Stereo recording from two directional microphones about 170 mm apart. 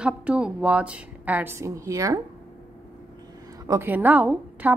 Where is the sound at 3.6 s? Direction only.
15° right (ahead or behind).